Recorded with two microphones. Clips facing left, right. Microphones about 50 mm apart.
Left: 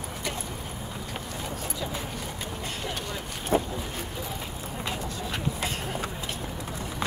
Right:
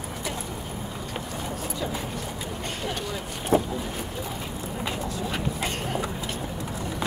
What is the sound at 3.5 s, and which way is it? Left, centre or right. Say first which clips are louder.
Boat: right 3 dB; centre.